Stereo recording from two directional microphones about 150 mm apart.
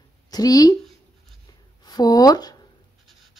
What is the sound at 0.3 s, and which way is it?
Speech, 25° left (ahead or behind).